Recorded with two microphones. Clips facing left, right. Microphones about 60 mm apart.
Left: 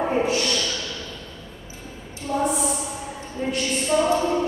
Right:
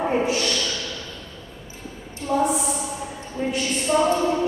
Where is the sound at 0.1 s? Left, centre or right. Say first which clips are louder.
Even; centre.